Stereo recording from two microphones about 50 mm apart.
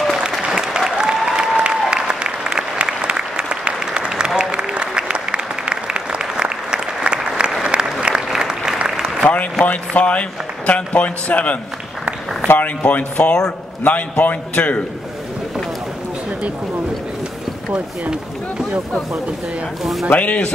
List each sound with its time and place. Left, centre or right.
0.5 s applause: centre
8.1 s applause: centre
9.7 s a man's voice: left
19.8 s speech: centre
20.1 s a man's voice: left